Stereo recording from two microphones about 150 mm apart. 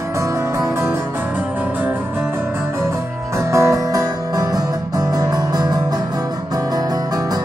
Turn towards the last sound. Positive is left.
turn(degrees=-25)  # may be behind; listen again after turning